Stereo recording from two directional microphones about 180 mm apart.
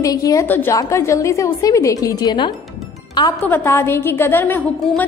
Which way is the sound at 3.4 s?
10° left (ahead or behind).